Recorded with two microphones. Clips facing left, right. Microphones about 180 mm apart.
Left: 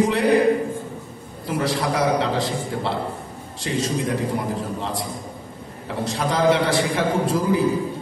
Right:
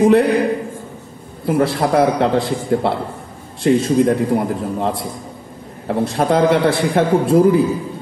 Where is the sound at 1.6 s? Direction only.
55° right (ahead or behind).